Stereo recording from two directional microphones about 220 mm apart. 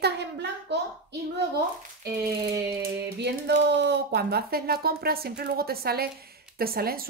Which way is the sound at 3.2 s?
50° right (ahead or behind).